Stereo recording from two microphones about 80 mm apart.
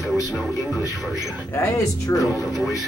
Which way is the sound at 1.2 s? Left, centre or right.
Left.